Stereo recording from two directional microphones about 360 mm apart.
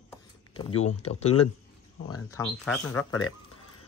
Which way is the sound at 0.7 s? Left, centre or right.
Left.